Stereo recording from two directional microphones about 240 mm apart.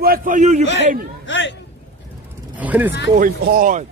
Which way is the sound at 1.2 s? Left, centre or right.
Left.